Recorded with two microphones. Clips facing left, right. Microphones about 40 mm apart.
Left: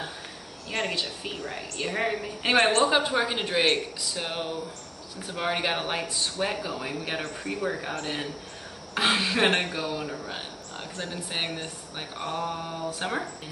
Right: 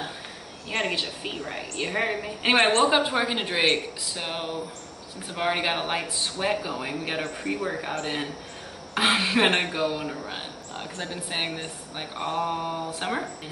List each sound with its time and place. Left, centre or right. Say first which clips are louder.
0.7 s speech: right 2 dB; centre